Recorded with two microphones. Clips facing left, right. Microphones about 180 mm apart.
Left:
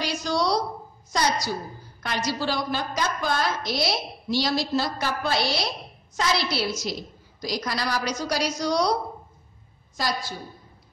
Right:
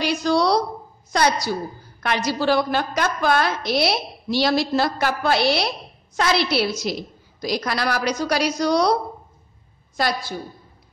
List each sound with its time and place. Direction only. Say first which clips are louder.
0.0 s a sound: right 6 dB; 60° right (ahead or behind)
1.1 s a woman's voice: right 5 dB; 60° right (ahead or behind)
9.9 s a woman's voice: right 5 dB; 60° right (ahead or behind)